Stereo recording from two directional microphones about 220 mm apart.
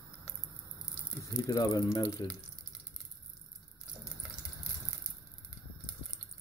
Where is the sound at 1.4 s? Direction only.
15° left (ahead or behind).